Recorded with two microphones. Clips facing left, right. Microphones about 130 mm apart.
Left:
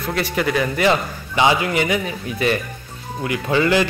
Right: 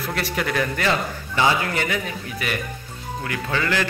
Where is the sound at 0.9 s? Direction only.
20° left (ahead or behind).